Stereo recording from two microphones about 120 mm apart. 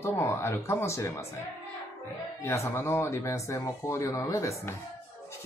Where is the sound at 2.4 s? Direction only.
25° left (ahead or behind).